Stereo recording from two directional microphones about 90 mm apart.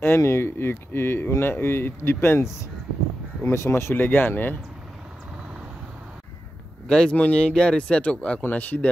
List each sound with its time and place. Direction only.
0.0 s speech: 30° left (ahead or behind)
6.9 s speech: 10° left (ahead or behind)